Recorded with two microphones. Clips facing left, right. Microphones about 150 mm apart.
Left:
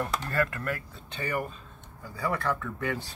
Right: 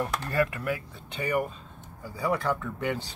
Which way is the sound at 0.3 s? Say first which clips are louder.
Right 4 dB; 20° right (ahead or behind).